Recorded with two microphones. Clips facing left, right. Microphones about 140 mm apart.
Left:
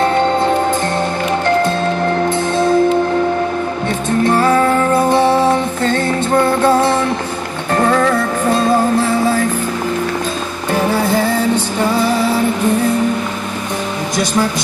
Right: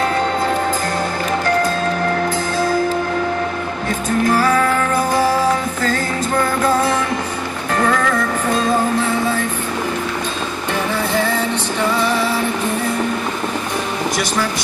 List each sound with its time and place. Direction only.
2.2 s music: 25° left (ahead or behind)
4.2 s music: 25° left (ahead or behind)